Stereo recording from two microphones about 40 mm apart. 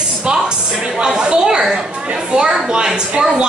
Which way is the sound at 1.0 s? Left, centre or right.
Right.